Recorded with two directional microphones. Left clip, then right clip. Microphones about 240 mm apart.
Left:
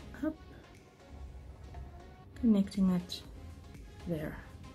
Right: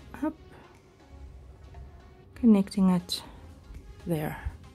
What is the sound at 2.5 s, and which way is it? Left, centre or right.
Speech, right.